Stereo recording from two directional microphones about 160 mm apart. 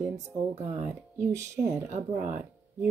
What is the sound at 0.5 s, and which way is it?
Speech, 40° right (ahead or behind).